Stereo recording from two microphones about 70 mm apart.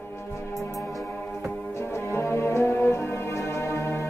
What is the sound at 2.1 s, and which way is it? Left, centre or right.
Music, left.